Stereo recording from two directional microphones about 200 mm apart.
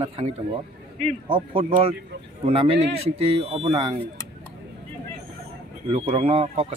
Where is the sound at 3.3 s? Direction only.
30° right (ahead or behind).